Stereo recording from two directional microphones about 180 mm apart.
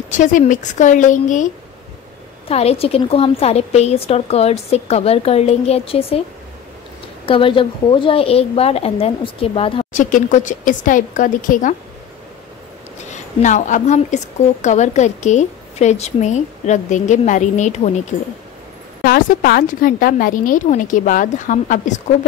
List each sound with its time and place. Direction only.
0.1 s a woman's voice: 45° left (ahead or behind)
7.2 s a woman's voice: 30° left (ahead or behind)
9.9 s a woman's voice: 45° left (ahead or behind)
13.1 s a woman's voice: 45° left (ahead or behind)
19.0 s a woman's voice: 55° left (ahead or behind)